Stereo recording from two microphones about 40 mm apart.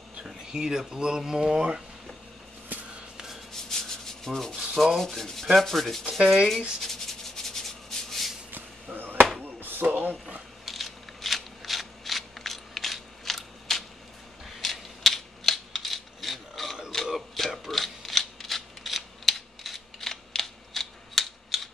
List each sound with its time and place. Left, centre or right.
0.4 s speech: centre
2.7 s a sound: right
3.6 s rub: centre
5.5 s sanding: centre
6.0 s speech: centre
6.8 s rub: centre
8.9 s chop: right
9.4 s a sound: right
10.6 s scissors: centre
14.4 s a sound: centre
17.1 s mechanisms: centre